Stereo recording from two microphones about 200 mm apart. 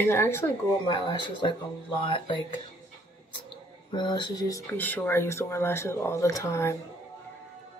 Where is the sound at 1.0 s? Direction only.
25° left (ahead or behind).